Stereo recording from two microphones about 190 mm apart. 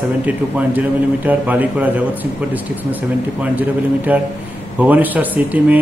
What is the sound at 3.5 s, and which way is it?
A man's voice, 10° right (ahead or behind).